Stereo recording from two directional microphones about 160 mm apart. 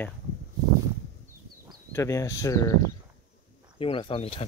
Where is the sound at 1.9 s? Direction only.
20° left (ahead or behind).